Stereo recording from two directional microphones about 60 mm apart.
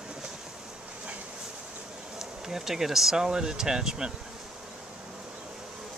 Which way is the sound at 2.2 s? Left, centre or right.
Centre.